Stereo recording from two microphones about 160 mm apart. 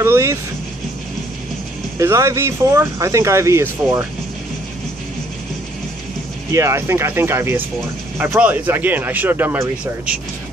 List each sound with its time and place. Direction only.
0.0 s speech: 15° right (ahead or behind)
2.0 s speech: 20° right (ahead or behind)
6.5 s speech: 15° right (ahead or behind)